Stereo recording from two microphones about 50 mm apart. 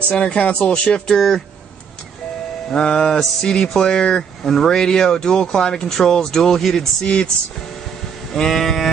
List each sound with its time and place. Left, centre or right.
0.1 s speech: left
1.1 s speech: centre
2.7 s speech: centre
8.3 s speech: centre